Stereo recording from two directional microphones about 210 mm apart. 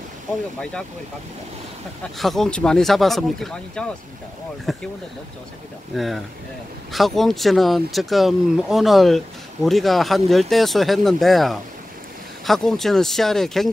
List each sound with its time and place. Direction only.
2.1 s speech: centre (ahead or behind)
5.9 s speech: centre (ahead or behind)